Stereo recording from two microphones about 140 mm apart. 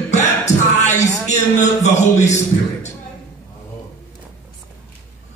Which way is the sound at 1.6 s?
55° left (ahead or behind).